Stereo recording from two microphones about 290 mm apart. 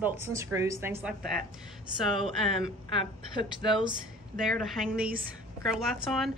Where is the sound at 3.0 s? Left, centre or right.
Centre.